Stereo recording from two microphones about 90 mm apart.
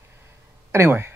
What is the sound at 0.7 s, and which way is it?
Speech, 30° right (ahead or behind).